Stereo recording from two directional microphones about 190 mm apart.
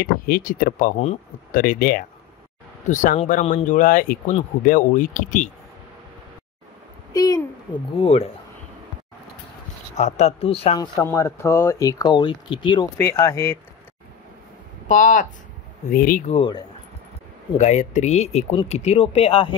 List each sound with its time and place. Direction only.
0.0 s speech: 50° left (ahead or behind)
7.1 s a woman's voice: 20° left (ahead or behind)
9.9 s speech: 35° left (ahead or behind)
10.8 s speech: 15° left (ahead or behind)
14.9 s speech: 45° left (ahead or behind)
16.3 s a woman's voice: 25° left (ahead or behind)
17.6 s speech: 35° left (ahead or behind)